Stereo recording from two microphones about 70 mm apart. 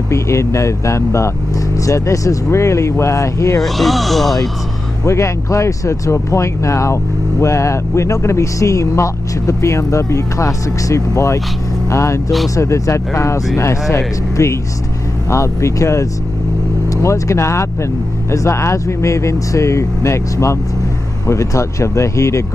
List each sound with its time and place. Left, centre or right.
0.1 s speech: left
3.6 s speech: centre
5.0 s speech: left